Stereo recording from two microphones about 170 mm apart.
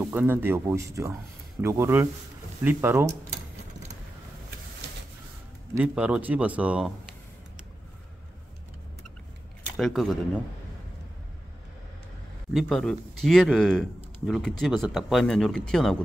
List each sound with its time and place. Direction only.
0.1 s speech: 10° right (ahead or behind)
5.8 s speech: 5° right (ahead or behind)
9.8 s speech: centre (ahead or behind)
12.5 s speech: centre (ahead or behind)